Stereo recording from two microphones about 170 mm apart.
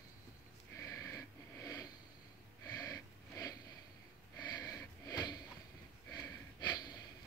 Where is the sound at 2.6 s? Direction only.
20° left (ahead or behind).